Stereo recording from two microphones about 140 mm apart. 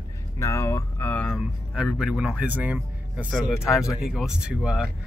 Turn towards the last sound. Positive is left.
turn(degrees=-5)  # may be behind; listen again after turning